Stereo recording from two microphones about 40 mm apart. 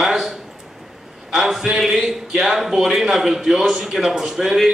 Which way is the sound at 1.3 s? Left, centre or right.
Centre.